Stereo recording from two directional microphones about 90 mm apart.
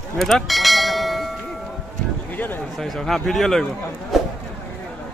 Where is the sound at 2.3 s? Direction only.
20° left (ahead or behind).